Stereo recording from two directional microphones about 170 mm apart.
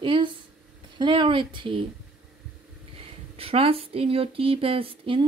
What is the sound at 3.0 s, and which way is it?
Speech, 35° right (ahead or behind).